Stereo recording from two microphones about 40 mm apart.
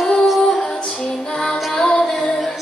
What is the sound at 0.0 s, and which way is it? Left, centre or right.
Music, centre.